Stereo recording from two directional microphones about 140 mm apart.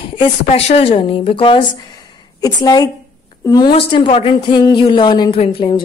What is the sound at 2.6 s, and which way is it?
Speech, 25° left (ahead or behind).